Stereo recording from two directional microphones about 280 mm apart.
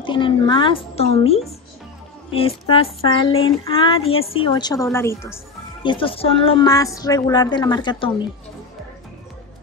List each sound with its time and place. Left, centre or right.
0.0 s a woman's voice: centre
2.3 s child singing: centre
4.8 s a woman's voice: centre